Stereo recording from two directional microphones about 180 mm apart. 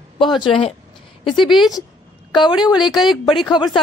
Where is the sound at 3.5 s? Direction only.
25° left (ahead or behind).